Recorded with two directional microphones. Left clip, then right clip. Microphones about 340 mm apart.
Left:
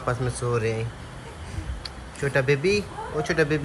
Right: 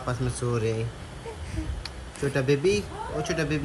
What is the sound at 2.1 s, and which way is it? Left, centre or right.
Speech, centre.